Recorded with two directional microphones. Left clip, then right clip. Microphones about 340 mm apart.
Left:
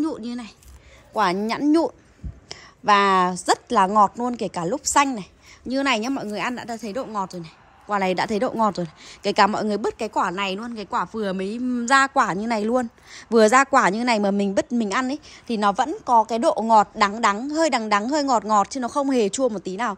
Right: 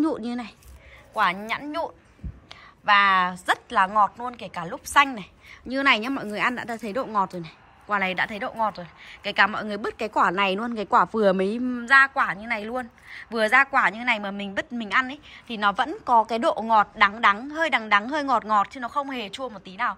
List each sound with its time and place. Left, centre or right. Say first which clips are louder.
0.0 s speech: right 1 dB; centre
1.1 s a woman's voice: left 2 dB; centre